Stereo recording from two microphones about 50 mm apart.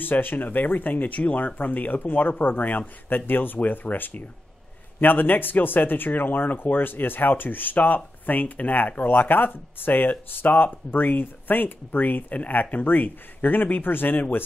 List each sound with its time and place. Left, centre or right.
0.0 s speech: left